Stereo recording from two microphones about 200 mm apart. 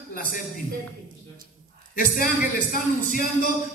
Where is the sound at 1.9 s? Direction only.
45° left (ahead or behind).